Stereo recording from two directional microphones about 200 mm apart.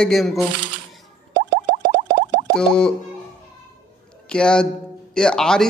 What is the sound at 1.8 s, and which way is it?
Plop, 55° right (ahead or behind).